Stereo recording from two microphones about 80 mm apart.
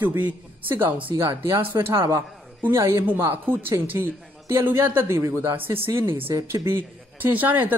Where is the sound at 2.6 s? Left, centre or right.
Right.